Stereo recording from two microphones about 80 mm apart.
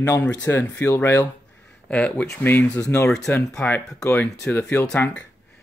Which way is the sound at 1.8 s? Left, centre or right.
Centre.